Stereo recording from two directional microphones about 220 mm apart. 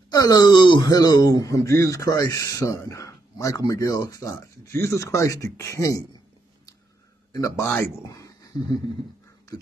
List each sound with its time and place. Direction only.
0.1 s a man's voice: 15° left (ahead or behind)
7.3 s speech: 15° left (ahead or behind)